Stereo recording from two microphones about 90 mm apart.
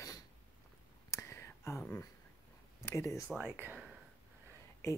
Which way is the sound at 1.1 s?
30° left (ahead or behind).